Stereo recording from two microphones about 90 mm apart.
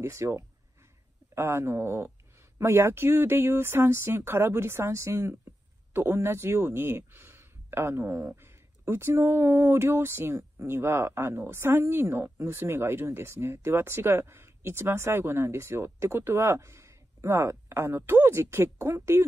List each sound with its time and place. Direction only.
0.0 s speech: 30° right (ahead or behind)